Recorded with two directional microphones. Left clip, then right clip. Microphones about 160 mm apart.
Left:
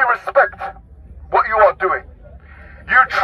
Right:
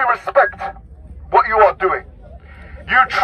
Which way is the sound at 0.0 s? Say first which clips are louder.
Even; centre (ahead or behind).